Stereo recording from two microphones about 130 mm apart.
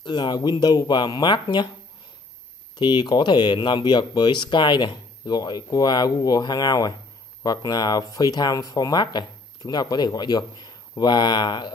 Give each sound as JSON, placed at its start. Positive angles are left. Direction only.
{"t": 0.0, "sound": "speech", "side_deg": 35}
{"t": 2.8, "sound": "speech", "side_deg": 35}